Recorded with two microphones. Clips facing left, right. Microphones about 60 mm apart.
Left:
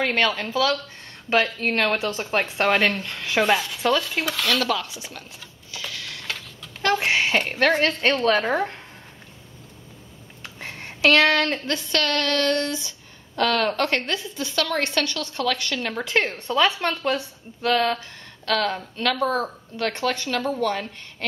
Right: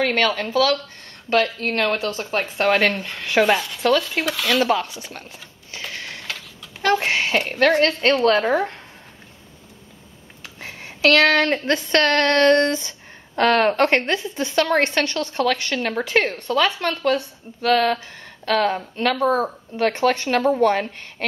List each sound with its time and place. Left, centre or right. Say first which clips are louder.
0.0 s a woman's voice: right 2 dB; centre
4.6 s a woman's voice: right 5 dB; right
5.7 s printer: right 2 dB; right
6.2 s a sound: even; centre
7.2 s a woman's voice: right 5 dB; centre
10.4 s a sound: even; centre
11.1 s a woman's voice: right 3 dB; centre
11.6 s a woman's voice: right 6 dB; right
15.8 s a woman's voice: right 3 dB; centre
16.3 s a woman's voice: right 1 dB; centre
17.6 s speech: right 3 dB; centre
18.5 s a woman's voice: right 4 dB; centre; by 21.3 s right